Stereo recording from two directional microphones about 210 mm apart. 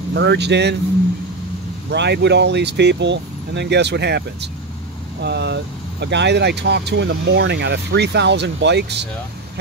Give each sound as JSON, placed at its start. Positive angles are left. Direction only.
{"t": 0.1, "sound": "speech", "side_deg": -55}
{"t": 1.9, "sound": "speech", "side_deg": -55}